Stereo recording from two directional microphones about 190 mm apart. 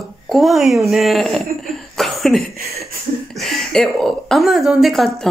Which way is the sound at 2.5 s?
55° right (ahead or behind).